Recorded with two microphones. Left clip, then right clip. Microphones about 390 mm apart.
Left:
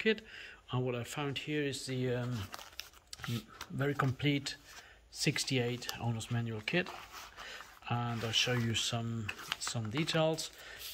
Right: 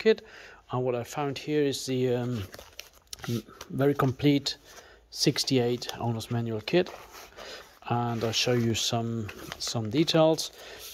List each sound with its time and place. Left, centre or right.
0.7 s speech: centre